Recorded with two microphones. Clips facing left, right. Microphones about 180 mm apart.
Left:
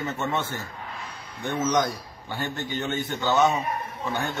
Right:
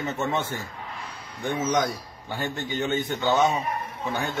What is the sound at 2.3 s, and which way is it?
A man's voice, 15° right (ahead or behind).